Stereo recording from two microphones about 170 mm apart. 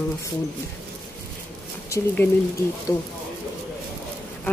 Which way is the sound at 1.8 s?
15° left (ahead or behind).